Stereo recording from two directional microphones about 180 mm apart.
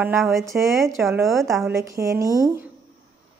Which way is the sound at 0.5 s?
15° right (ahead or behind).